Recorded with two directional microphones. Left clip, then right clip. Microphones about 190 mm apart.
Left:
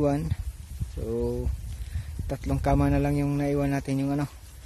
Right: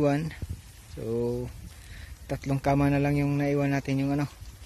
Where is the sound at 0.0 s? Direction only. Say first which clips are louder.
Even; 10° left (ahead or behind).